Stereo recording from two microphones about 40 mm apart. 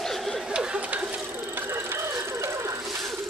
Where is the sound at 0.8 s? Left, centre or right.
Right.